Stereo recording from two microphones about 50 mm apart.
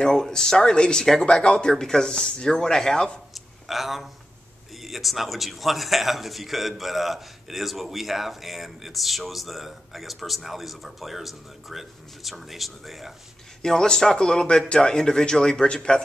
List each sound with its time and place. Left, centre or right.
0.0 s speech: centre
3.3 s a sound: centre
4.8 s a man's voice: centre
13.6 s speech: centre